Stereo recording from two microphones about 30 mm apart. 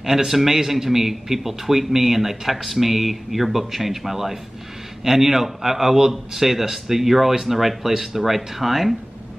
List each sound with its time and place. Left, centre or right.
0.0 s a man's voice: centre